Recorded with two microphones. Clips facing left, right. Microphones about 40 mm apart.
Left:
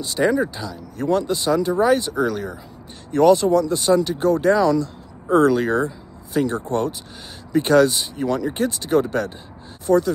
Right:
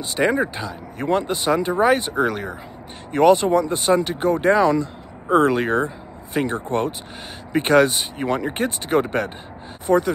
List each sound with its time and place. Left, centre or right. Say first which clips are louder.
0.0 s speech: left 1 dB; right